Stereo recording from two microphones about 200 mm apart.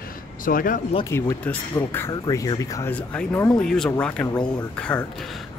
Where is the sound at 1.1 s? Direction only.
10° left (ahead or behind).